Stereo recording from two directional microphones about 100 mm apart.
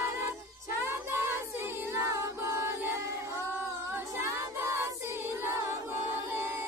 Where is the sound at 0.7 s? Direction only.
25° right (ahead or behind).